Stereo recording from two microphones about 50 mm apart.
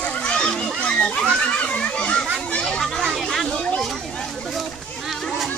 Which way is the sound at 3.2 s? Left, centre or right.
Centre.